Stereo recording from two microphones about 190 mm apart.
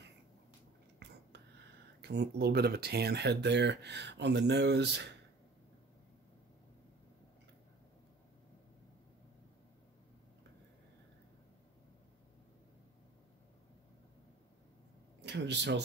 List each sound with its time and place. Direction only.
1.0 s whispering: 65° right (ahead or behind)
2.0 s speech: 60° right (ahead or behind)
15.2 s speech: 65° right (ahead or behind)